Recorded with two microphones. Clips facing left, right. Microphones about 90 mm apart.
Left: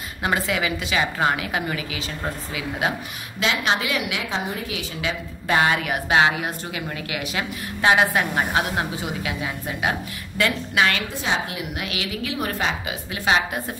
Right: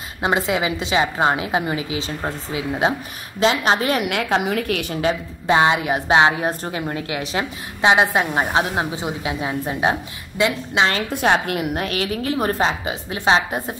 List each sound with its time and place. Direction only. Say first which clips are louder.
0.2 s a woman's voice: right 3 dB; 25° right (ahead or behind); by 4.4 s 55° right (ahead or behind)
4.4 s a woman's voice: right 7 dB; 70° right (ahead or behind)
5.5 s a woman's voice: right 4 dB; 25° right (ahead or behind)
11.1 s a woman's voice: right 7 dB; 60° right (ahead or behind)
11.7 s a woman's voice: right 6 dB; 40° right (ahead or behind)